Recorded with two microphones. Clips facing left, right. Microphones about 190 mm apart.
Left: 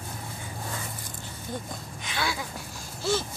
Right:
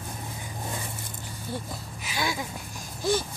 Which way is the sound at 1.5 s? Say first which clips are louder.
Even; 10° right (ahead or behind).